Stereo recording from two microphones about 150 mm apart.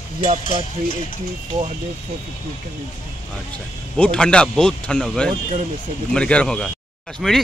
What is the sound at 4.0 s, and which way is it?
Speech, 5° left (ahead or behind).